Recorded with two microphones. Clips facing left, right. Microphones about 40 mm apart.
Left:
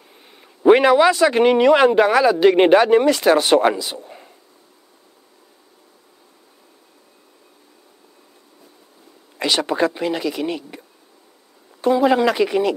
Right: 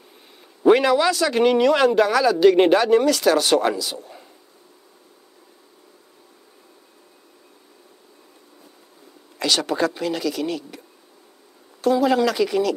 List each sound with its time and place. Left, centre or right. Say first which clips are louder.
0.7 s speech: left 4 dB; left
9.4 s speech: left 2 dB; centre
11.8 s speech: left 2 dB; left